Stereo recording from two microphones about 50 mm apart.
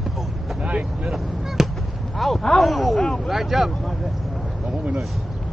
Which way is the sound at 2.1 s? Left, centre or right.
Centre.